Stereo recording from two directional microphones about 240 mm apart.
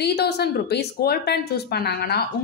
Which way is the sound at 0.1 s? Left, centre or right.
Left.